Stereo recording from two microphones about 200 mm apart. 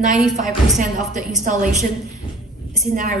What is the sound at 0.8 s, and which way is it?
A woman's voice, 40° right (ahead or behind).